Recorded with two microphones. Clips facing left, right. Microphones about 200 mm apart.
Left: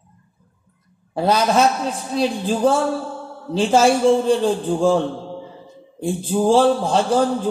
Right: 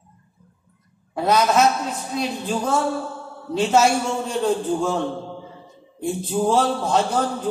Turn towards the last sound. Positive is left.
turn(degrees=30)  # may be behind; listen again after turning